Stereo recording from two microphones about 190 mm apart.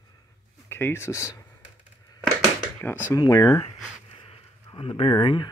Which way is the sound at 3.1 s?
20° left (ahead or behind).